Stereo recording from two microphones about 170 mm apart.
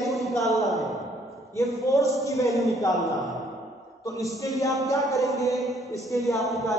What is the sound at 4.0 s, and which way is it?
Speech, 20° left (ahead or behind).